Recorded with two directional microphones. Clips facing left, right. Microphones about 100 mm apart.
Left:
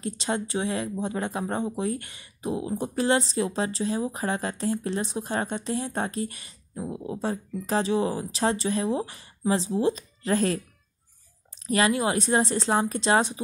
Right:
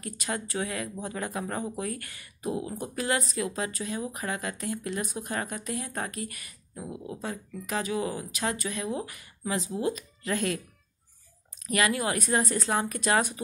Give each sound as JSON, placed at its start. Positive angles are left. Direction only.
{"t": 0.0, "sound": "speech", "side_deg": 25}
{"t": 11.6, "sound": "speech", "side_deg": 30}